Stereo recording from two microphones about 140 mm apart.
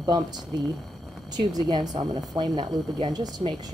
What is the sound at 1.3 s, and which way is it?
Speech, 30° right (ahead or behind).